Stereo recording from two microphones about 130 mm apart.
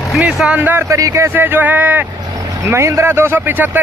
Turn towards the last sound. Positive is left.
turn(degrees=-15)  # may be behind; listen again after turning